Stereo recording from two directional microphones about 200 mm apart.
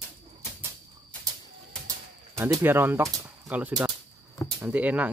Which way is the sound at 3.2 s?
10° right (ahead or behind).